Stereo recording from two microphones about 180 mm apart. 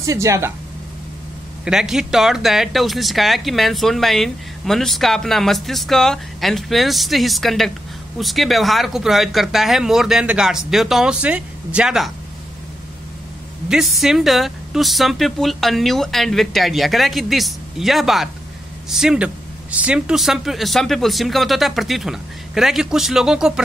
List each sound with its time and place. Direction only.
0.0 s speech: 15° right (ahead or behind)
1.6 s speech: 5° right (ahead or behind)
13.7 s speech: centre (ahead or behind)